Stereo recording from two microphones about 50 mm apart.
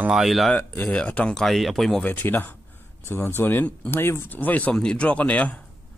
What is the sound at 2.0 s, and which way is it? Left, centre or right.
Speech, left.